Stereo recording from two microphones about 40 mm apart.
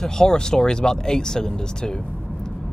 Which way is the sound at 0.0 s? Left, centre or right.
Centre.